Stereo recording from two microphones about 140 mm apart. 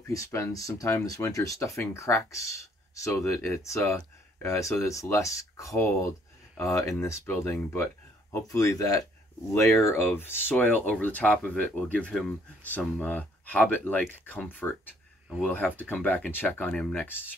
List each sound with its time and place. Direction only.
0.1 s speech: 20° left (ahead or behind)